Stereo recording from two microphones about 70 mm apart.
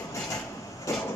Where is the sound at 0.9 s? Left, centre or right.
Left.